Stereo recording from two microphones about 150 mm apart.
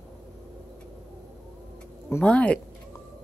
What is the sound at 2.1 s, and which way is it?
Speech, 10° left (ahead or behind).